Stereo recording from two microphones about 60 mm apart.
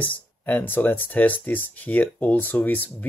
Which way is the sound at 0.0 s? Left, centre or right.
Left.